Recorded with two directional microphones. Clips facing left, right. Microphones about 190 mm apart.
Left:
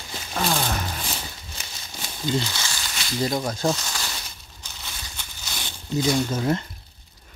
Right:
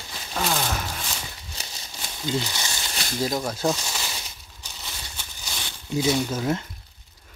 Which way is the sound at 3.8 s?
10° right (ahead or behind).